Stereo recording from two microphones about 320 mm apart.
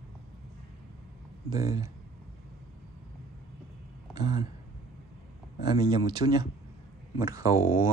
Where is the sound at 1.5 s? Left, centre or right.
Centre.